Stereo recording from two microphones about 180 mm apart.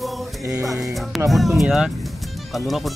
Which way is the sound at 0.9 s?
Centre (ahead or behind).